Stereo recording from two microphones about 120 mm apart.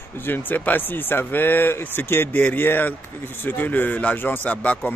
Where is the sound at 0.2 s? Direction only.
15° left (ahead or behind).